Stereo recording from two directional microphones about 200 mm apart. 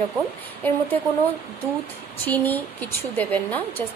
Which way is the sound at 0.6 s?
10° left (ahead or behind).